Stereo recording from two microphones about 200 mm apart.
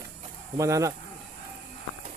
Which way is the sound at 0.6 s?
15° right (ahead or behind).